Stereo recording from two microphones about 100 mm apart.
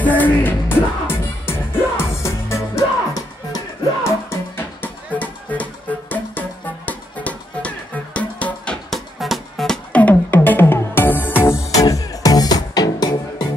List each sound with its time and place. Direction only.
0.0 s music: 15° left (ahead or behind)
8.9 s music: centre (ahead or behind)
9.9 s music: 15° left (ahead or behind)
11.7 s music: 35° left (ahead or behind)